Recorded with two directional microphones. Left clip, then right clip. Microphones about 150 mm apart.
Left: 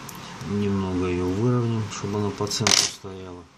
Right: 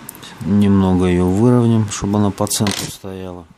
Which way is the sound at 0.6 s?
85° right.